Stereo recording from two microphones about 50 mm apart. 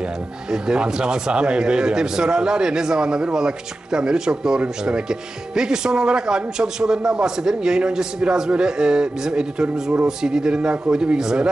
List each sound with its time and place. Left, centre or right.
0.5 s speech: centre